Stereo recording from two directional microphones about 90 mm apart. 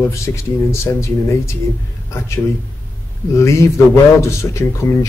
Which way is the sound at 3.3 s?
35° left (ahead or behind).